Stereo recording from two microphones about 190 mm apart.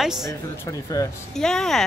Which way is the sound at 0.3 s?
20° left (ahead or behind).